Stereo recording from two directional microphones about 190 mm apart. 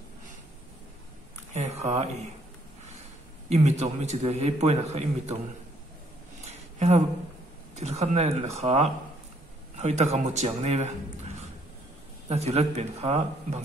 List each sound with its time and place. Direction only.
1.5 s a man's voice: 35° right (ahead or behind)
3.4 s a man's voice: 35° right (ahead or behind)
6.4 s a sound: 35° right (ahead or behind)
7.7 s a man's voice: 35° right (ahead or behind)
12.3 s a man's voice: 35° right (ahead or behind)